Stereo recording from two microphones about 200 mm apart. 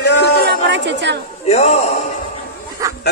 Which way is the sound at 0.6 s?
60° right (ahead or behind).